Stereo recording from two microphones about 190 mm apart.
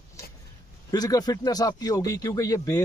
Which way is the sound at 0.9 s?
20° left (ahead or behind).